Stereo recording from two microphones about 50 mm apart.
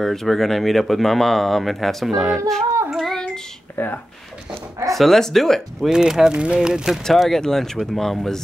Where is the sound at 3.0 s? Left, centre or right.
Centre.